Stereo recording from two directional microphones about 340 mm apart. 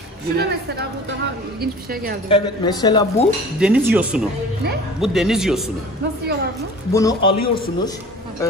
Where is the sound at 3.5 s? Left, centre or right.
Centre.